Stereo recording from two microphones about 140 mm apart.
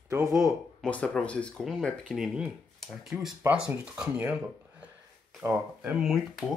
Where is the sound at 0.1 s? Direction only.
20° right (ahead or behind).